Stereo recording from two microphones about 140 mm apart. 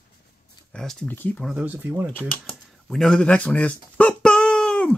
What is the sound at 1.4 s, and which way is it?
Speech, 10° right (ahead or behind).